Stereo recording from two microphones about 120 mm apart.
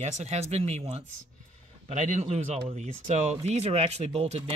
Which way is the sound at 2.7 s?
75° right (ahead or behind).